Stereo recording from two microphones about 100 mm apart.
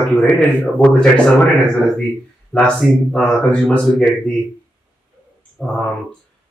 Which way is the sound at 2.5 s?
10° left (ahead or behind).